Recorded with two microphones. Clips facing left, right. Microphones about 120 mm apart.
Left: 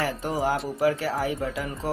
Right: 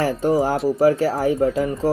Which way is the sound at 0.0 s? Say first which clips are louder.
Right 8 dB; 30° right (ahead or behind).